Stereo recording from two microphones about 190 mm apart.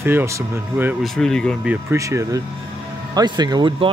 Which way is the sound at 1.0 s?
Centre (ahead or behind).